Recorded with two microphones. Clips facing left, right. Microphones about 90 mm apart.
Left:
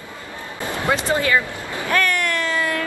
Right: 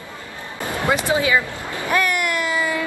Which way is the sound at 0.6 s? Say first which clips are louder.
Right 1 dB; 15° right (ahead or behind).